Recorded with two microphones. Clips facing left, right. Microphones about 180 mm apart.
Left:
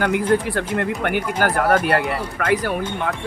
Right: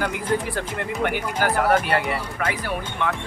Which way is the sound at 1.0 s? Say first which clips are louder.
Left 3 dB; 50° left (ahead or behind).